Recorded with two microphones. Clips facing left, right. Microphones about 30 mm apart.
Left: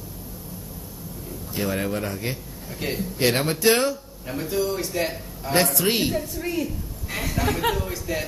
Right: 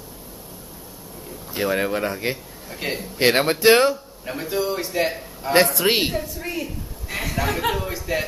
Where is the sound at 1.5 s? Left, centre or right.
Right.